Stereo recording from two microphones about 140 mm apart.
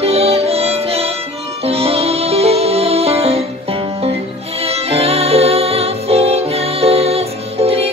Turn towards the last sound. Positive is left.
turn(degrees=-45)  # may be behind; listen again after turning